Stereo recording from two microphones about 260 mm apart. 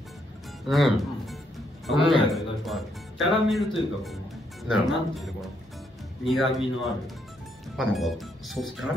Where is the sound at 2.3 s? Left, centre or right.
Centre.